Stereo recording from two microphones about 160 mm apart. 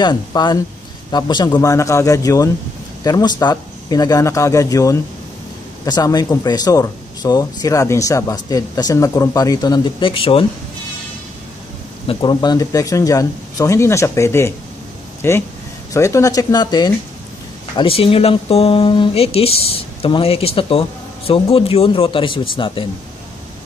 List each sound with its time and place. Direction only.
0.0 s speech: 25° left (ahead or behind)
12.1 s speech: 30° left (ahead or behind)